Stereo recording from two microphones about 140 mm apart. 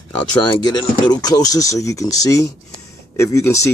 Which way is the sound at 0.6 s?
30° left (ahead or behind).